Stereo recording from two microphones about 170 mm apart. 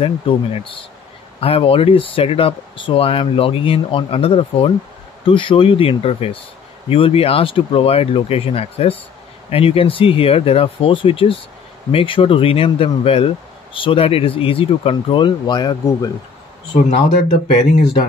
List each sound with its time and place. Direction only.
0.0 s speech: 30° left (ahead or behind)
16.7 s speech: 45° left (ahead or behind)